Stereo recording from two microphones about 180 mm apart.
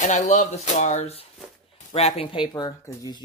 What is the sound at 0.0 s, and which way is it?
Speech, 40° left (ahead or behind).